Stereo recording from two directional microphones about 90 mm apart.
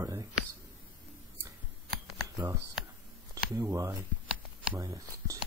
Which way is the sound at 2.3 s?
40° right (ahead or behind).